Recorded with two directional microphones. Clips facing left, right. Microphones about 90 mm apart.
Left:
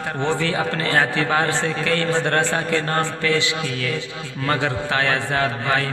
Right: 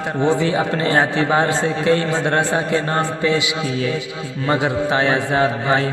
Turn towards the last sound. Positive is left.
turn(degrees=-20)  # may be behind; listen again after turning